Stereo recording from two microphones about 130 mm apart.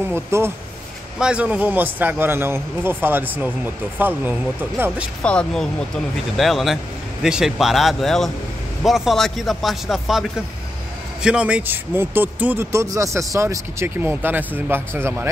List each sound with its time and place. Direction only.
0.1 s a man's voice: 20° right (ahead or behind)
5.2 s speech: 5° left (ahead or behind)
11.2 s a man's voice: 5° right (ahead or behind)